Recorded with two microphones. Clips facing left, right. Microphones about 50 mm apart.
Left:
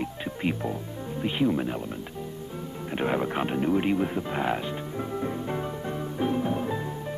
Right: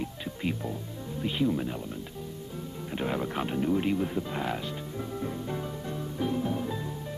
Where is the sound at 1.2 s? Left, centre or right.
Left.